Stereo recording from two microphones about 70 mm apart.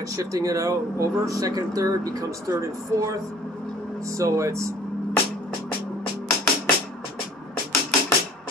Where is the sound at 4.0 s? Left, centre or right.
Right.